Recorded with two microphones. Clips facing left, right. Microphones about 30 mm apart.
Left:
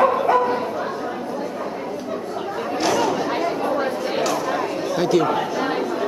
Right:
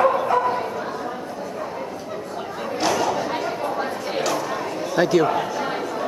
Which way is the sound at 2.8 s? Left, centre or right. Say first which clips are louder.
Left 1 dB; centre.